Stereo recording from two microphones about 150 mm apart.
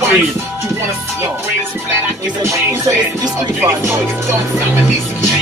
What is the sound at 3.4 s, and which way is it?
Music, 15° right (ahead or behind).